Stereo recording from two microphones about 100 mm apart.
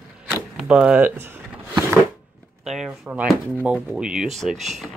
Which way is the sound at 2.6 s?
5° right (ahead or behind).